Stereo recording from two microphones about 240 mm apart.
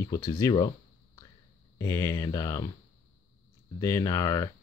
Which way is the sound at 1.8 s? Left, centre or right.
Centre.